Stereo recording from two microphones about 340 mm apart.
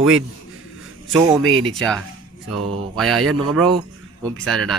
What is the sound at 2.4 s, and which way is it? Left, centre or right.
Mantra, right.